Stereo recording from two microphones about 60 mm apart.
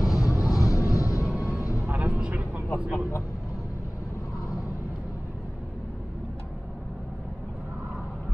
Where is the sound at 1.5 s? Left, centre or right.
Left.